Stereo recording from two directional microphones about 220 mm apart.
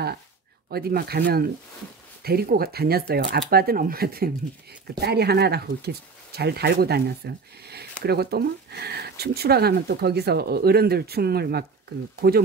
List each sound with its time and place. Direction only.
0.7 s speech: 45° right (ahead or behind)